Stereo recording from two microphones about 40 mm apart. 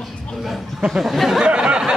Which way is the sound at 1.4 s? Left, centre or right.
Right.